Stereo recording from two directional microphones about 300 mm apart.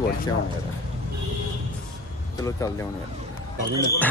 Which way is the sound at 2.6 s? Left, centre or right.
Centre.